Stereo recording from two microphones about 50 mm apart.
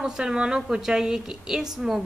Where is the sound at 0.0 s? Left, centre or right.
Centre.